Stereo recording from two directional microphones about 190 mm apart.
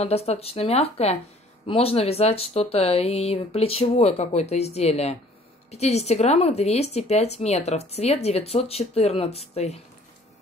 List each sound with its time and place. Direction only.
0.0 s speech: 35° left (ahead or behind)